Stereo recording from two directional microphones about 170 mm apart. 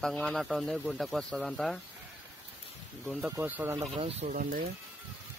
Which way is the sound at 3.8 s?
40° right (ahead or behind).